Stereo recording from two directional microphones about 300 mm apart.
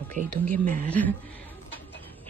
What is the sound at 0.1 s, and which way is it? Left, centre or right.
Speech, right.